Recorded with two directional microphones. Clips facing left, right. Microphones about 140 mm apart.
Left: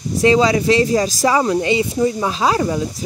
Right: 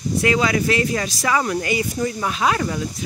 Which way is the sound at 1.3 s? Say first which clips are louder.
Left 3 dB; 25° left (ahead or behind).